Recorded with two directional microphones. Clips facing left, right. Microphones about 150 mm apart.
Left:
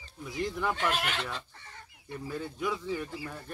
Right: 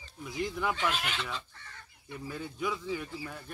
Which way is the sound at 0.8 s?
55° left (ahead or behind).